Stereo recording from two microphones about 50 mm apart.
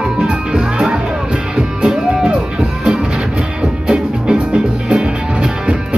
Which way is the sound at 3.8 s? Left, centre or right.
Centre.